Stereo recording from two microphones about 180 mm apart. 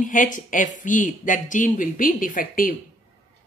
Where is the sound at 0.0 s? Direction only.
45° left (ahead or behind).